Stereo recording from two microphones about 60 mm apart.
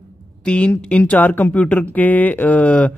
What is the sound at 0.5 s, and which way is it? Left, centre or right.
Speech, centre.